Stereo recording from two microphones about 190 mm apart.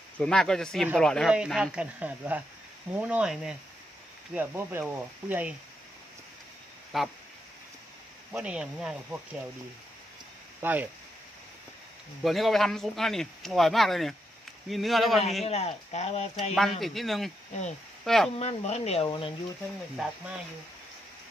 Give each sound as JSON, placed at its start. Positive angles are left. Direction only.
{"t": 0.2, "sound": "speech", "side_deg": 5}
{"t": 6.9, "sound": "speech", "side_deg": 0}
{"t": 8.3, "sound": "speech", "side_deg": -5}
{"t": 10.6, "sound": "speech", "side_deg": -10}
{"t": 12.2, "sound": "speech", "side_deg": 0}
{"t": 15.4, "sound": "speech", "side_deg": 35}
{"t": 16.8, "sound": "speech", "side_deg": 0}
{"t": 18.3, "sound": "speech", "side_deg": 35}
{"t": 20.0, "sound": "speech", "side_deg": 0}